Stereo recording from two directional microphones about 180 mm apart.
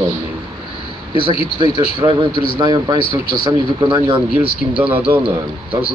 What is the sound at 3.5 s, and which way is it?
Speech, 25° right (ahead or behind).